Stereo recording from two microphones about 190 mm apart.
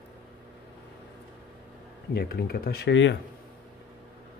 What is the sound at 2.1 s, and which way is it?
Speech, 55° left (ahead or behind).